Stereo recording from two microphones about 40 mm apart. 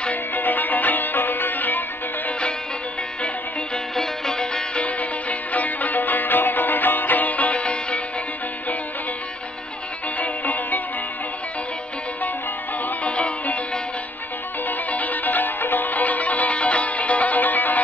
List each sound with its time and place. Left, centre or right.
0.1 s music: left
3.9 s music: centre
4.7 s music: left
10.1 s music: left
13.0 s music: left
14.9 s music: left